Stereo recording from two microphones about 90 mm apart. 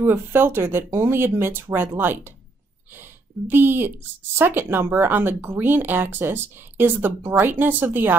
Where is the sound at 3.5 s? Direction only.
25° right (ahead or behind).